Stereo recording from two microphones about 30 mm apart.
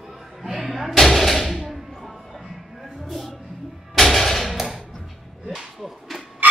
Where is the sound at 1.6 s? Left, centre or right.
Centre.